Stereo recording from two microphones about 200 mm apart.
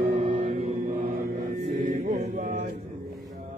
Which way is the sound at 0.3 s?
35° right (ahead or behind).